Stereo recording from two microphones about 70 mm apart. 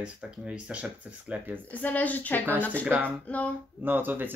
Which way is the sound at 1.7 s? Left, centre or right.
Left.